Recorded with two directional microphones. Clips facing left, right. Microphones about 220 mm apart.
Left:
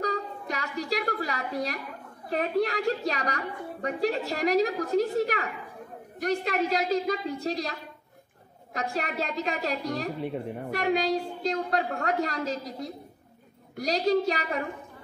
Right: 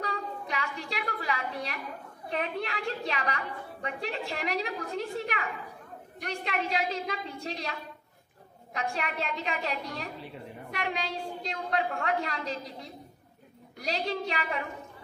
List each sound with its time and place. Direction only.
0.0 s a sound: 40° left (ahead or behind)
2.3 s a woman's voice: 40° left (ahead or behind)
8.7 s a woman's voice: 40° left (ahead or behind)